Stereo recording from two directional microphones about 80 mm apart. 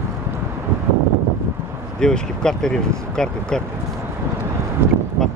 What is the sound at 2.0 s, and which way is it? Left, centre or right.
Speech, centre.